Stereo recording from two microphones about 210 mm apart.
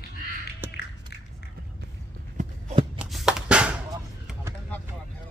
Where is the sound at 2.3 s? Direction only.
30° right (ahead or behind).